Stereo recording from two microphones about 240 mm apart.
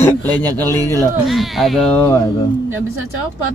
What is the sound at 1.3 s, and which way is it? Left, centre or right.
Speech, centre.